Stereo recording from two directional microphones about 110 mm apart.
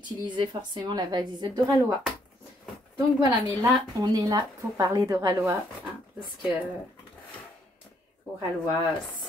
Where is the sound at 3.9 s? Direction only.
35° right (ahead or behind).